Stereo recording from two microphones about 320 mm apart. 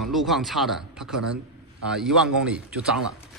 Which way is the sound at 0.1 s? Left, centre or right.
Centre.